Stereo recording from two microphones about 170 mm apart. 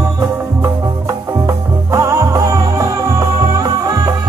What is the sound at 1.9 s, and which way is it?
Music, 15° right (ahead or behind).